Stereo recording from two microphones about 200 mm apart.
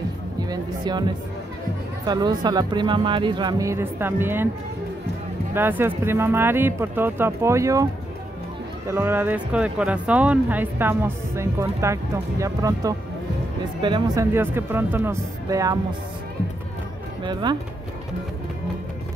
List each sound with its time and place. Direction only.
0.5 s speech: 20° right (ahead or behind)
5.5 s speech: 10° right (ahead or behind)
17.2 s speech: 20° right (ahead or behind)